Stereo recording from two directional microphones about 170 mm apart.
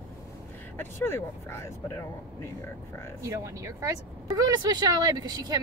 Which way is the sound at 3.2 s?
15° right (ahead or behind).